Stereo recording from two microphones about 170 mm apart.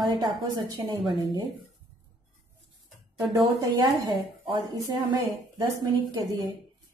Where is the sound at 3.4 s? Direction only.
20° right (ahead or behind).